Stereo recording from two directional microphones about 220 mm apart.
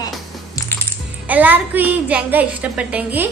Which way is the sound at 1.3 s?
10° right (ahead or behind).